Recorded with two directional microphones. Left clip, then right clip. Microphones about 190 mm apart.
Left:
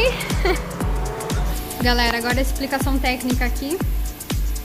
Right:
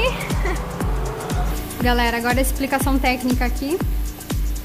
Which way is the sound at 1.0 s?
Centre (ahead or behind).